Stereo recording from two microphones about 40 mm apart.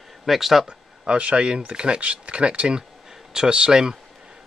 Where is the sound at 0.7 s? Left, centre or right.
Right.